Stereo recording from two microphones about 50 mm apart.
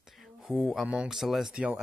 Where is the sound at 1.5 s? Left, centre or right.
Right.